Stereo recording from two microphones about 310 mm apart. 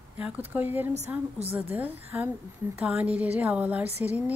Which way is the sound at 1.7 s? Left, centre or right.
Centre.